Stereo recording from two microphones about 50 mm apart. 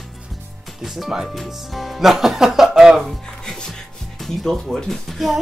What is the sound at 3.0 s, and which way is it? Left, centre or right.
Music, centre.